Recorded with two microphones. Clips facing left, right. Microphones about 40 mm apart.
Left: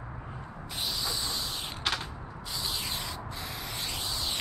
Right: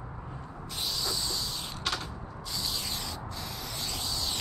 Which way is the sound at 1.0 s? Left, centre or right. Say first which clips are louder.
Right 2 dB; centre.